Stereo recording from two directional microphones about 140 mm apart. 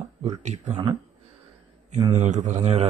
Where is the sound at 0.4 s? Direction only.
55° right (ahead or behind).